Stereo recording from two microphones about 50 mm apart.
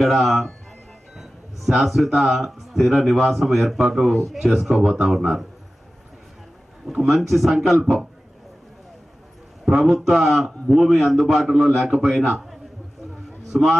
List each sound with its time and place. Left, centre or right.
0.0 s a man's voice: centre
5.0 s a man's voice: centre
7.0 s a man's voice: centre
9.8 s a man's voice: centre
13.5 s a man's voice: centre